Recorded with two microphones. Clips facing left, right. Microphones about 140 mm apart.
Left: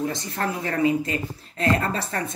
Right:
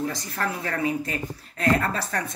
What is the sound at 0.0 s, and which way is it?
Speech, 25° left (ahead or behind).